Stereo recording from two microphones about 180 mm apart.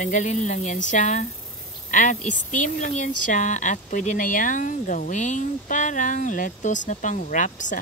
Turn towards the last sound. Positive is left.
turn(degrees=45)  # may be behind; listen again after turning